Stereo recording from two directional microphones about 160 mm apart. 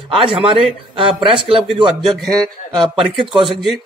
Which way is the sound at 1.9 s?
Centre (ahead or behind).